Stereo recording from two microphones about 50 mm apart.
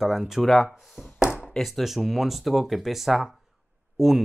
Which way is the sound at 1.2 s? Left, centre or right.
Centre.